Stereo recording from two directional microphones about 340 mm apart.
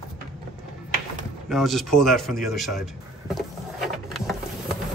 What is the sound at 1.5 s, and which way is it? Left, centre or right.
Speech, centre.